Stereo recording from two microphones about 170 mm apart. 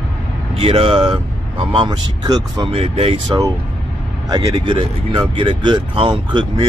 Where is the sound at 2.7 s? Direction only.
35° right (ahead or behind).